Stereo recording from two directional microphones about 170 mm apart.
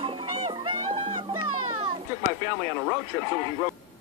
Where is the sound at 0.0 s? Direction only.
30° right (ahead or behind).